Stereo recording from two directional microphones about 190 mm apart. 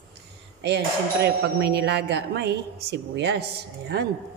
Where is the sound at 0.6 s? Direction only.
60° right (ahead or behind).